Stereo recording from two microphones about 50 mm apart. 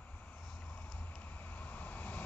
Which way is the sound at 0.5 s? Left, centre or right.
Left.